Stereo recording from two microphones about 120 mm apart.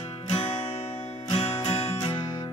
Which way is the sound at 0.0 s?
55° left (ahead or behind).